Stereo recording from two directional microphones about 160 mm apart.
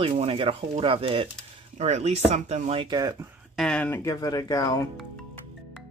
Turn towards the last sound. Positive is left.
turn(degrees=20)  # may be behind; listen again after turning